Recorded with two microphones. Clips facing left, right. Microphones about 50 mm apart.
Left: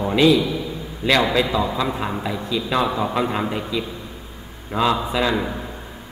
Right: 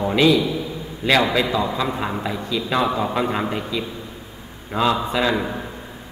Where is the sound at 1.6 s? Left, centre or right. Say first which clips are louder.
Even; centre.